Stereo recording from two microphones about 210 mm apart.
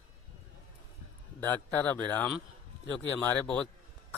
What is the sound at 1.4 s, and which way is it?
Speech, 10° left (ahead or behind).